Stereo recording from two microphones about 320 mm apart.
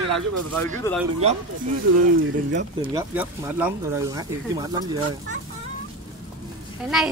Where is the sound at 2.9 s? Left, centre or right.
Centre.